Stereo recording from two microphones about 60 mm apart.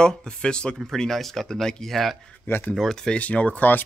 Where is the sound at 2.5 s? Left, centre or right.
Left.